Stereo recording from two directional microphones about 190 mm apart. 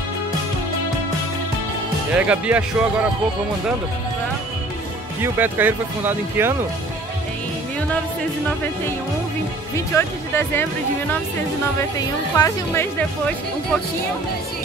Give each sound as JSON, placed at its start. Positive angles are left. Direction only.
{"t": 2.1, "sound": "speech", "side_deg": -5}
{"t": 5.2, "sound": "speech", "side_deg": -10}
{"t": 9.8, "sound": "speech", "side_deg": 10}
{"t": 12.4, "sound": "speech", "side_deg": 15}